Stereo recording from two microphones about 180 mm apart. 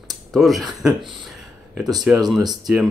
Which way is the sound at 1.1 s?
Centre (ahead or behind).